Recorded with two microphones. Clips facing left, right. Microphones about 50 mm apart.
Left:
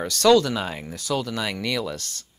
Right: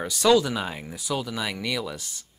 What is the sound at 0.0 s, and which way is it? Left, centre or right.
Speech, centre.